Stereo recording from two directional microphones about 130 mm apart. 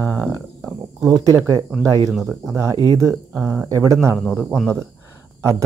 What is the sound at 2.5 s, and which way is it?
Speech, 25° right (ahead or behind).